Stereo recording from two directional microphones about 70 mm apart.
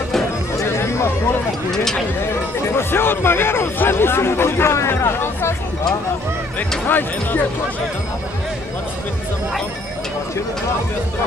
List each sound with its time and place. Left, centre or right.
0.6 s chatter: left
1.7 s speech: centre
2.7 s speech: left
6.9 s speech: left